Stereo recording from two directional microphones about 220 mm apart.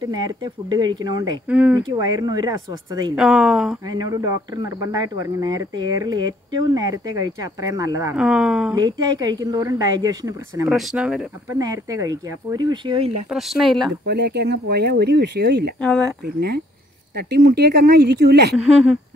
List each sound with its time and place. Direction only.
0.0 s speech: 20° right (ahead or behind)
1.5 s speech: 5° right (ahead or behind)
1.9 s speech: 20° right (ahead or behind)
3.2 s speech: centre (ahead or behind)
3.8 s speech: 20° right (ahead or behind)
8.2 s speech: 5° right (ahead or behind)
8.7 s speech: 15° right (ahead or behind)
10.7 s speech: centre (ahead or behind)
11.5 s speech: 15° right (ahead or behind)
13.3 s speech: centre (ahead or behind)
14.0 s speech: 50° right (ahead or behind)